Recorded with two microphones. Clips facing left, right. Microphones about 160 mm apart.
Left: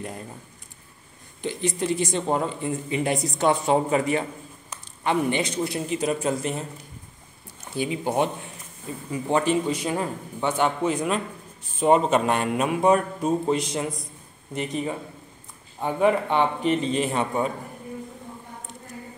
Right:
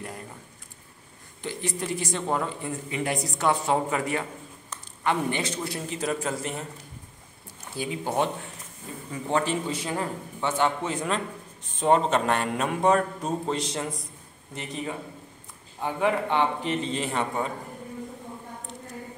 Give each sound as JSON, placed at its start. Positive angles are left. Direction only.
{"t": 1.4, "sound": "speech", "side_deg": 20}
{"t": 7.7, "sound": "a man's voice", "side_deg": 20}
{"t": 15.8, "sound": "a man's voice", "side_deg": 15}